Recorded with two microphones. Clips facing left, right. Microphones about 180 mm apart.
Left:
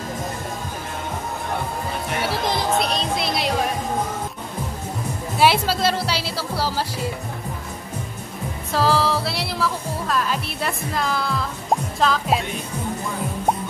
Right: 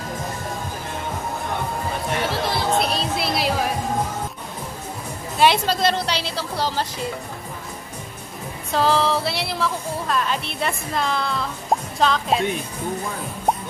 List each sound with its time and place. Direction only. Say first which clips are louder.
2.3 s chatter: left 1 dB; 15° left (ahead or behind)
2.8 s music: even; 5° right (ahead or behind)
5.4 s a woman's voice: even; 5° left (ahead or behind)
8.7 s speech: even; 5° left (ahead or behind)